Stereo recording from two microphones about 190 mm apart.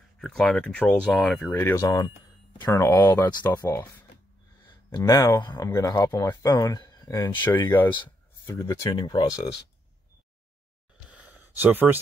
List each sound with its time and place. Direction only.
0.2 s speech: 5° left (ahead or behind)
8.5 s speech: 20° left (ahead or behind)
11.1 s a sound: 5° right (ahead or behind)